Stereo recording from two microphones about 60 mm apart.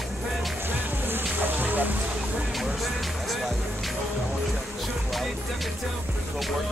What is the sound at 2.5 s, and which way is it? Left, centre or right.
Music, centre.